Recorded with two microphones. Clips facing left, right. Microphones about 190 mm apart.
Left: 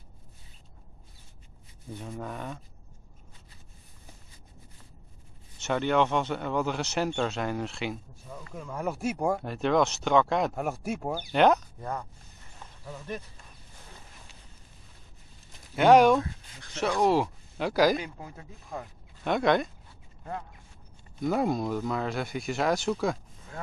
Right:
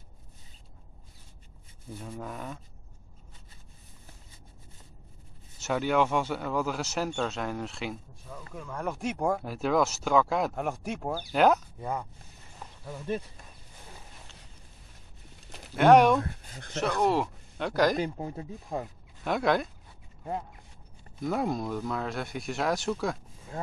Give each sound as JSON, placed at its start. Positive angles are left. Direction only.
{"t": 2.0, "sound": "speech", "side_deg": 0}
{"t": 5.6, "sound": "speech", "side_deg": -5}
{"t": 15.7, "sound": "speech", "side_deg": 0}
{"t": 16.3, "sound": "speech", "side_deg": -55}
{"t": 17.0, "sound": "speech", "side_deg": 0}
{"t": 17.9, "sound": "speech", "side_deg": -35}
{"t": 19.2, "sound": "speech", "side_deg": 0}
{"t": 21.2, "sound": "speech", "side_deg": 0}